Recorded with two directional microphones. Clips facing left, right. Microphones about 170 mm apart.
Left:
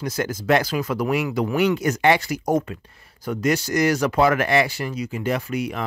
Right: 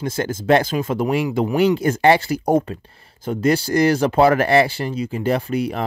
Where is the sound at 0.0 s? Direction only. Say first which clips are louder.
Right 2 dB; 25° right (ahead or behind).